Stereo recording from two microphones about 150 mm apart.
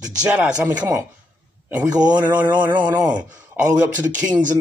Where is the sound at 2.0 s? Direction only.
10° right (ahead or behind).